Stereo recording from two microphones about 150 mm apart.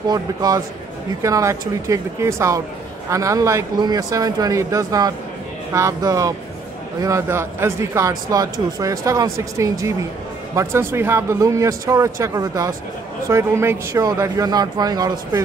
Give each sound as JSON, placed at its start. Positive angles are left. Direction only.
{"t": 0.1, "sound": "speech", "side_deg": -25}